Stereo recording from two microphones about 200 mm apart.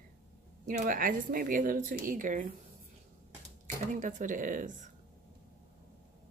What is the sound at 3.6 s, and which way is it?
Speech, 40° right (ahead or behind).